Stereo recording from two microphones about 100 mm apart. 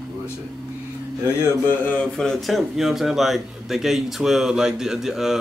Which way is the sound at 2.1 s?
5° left (ahead or behind).